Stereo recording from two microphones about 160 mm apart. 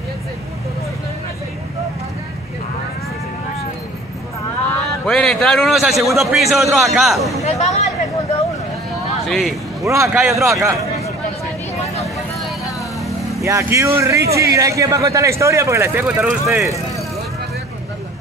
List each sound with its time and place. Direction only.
5.0 s a man's voice: 5° left (ahead or behind)
7.4 s a sound: 45° left (ahead or behind)
9.2 s a sound: centre (ahead or behind)
9.8 s speech: 20° right (ahead or behind)
13.0 s vehicle: centre (ahead or behind)
13.4 s speech: 20° right (ahead or behind)